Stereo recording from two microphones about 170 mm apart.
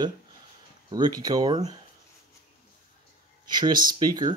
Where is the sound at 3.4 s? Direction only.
25° right (ahead or behind).